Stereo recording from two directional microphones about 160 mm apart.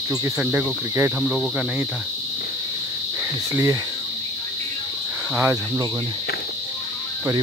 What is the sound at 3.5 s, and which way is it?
Cricket, 15° right (ahead or behind).